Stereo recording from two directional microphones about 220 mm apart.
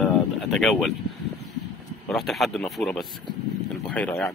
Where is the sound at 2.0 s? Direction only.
Centre (ahead or behind).